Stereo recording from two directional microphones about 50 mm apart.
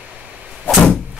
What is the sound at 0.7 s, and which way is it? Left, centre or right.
Vehicle, left.